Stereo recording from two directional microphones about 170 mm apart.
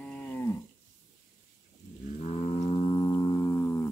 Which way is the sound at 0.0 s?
10° left (ahead or behind).